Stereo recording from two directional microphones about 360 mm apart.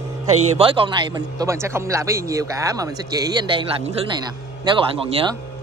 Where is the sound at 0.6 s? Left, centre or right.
Centre.